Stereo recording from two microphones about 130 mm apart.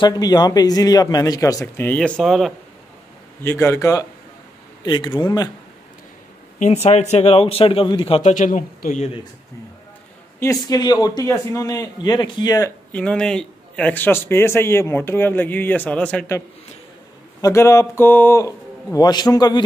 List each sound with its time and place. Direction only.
0.0 s speech: 30° left (ahead or behind)
1.9 s speech: 5° left (ahead or behind)
3.4 s speech: 20° left (ahead or behind)
4.8 s speech: 35° left (ahead or behind)
6.6 s a man's voice: 55° left (ahead or behind); by 8.2 s 40° left (ahead or behind)
8.2 s a man's voice: 75° left (ahead or behind)
10.7 s speech: 30° left (ahead or behind)
12.9 s a man's voice: 5° left (ahead or behind)
17.4 s speech: 25° left (ahead or behind)